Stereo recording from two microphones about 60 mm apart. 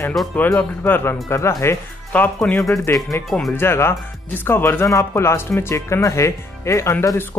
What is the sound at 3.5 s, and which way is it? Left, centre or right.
Speech, left.